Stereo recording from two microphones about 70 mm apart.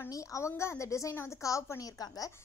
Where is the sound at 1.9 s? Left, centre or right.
Left.